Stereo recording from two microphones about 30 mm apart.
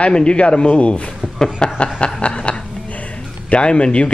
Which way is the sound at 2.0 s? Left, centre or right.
Left.